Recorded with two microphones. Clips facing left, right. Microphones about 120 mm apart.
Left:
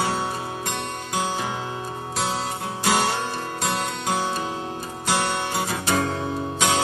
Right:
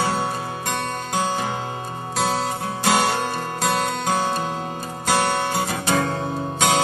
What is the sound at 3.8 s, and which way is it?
Music, 45° right (ahead or behind).